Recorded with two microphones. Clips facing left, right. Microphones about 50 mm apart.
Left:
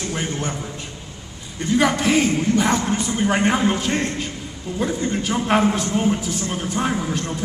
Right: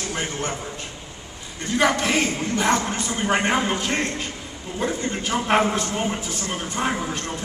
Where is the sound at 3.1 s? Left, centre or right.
Centre.